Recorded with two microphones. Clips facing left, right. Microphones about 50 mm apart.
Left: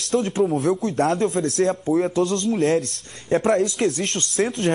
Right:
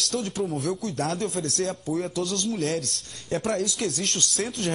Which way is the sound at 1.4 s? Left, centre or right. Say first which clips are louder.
Left 8 dB; left.